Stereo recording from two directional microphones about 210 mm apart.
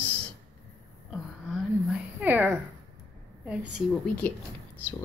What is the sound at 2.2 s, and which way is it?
A woman's voice, 10° right (ahead or behind).